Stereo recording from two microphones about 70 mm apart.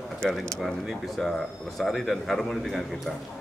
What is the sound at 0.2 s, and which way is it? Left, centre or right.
Speech, centre.